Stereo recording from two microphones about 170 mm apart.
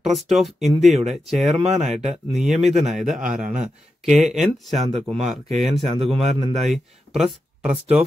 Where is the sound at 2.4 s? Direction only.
Centre (ahead or behind).